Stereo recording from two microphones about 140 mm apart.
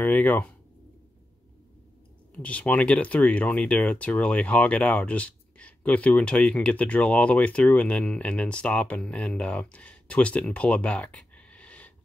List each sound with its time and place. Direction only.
0.0 s speech: 10° left (ahead or behind)
2.3 s speech: 10° left (ahead or behind)